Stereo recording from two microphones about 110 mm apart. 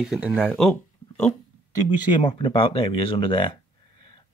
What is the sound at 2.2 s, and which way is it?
Speech, 50° left (ahead or behind).